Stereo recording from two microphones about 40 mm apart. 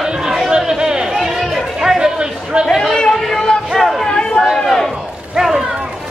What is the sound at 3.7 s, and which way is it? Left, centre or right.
Chatter, centre.